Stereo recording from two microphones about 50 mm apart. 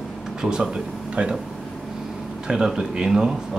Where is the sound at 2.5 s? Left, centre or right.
Centre.